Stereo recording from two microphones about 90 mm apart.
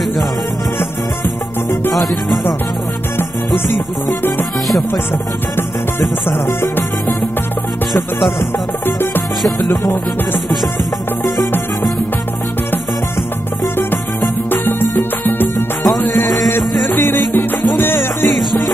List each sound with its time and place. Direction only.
2.0 s music: centre (ahead or behind)
5.6 s music: 25° left (ahead or behind)
7.9 s music: centre (ahead or behind)
8.8 s music: 25° left (ahead or behind)
14.5 s music: 25° left (ahead or behind)
16.9 s music: 25° left (ahead or behind)
18.3 s music: centre (ahead or behind)